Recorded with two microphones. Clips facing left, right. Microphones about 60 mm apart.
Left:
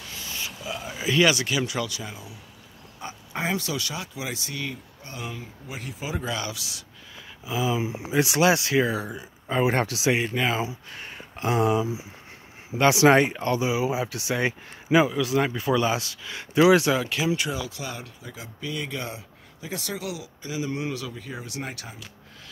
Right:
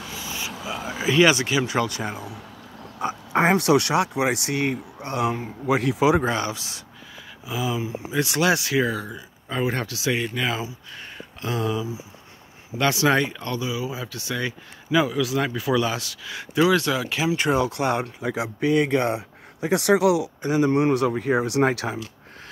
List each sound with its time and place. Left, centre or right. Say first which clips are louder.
0.1 s speech: right 2 dB; centre
1.7 s speech: right 6 dB; right
6.2 s speech: right 6 dB; right
7.4 s speech: left 1 dB; centre
8.9 s speech: left 1 dB; centre
15.0 s speech: even; centre
16.6 s speech: left 3 dB; centre
17.1 s speech: right 2 dB; centre
17.5 s speech: right 10 dB; right
18.2 s speech: right 12 dB; right
20.4 s speech: right 10 dB; right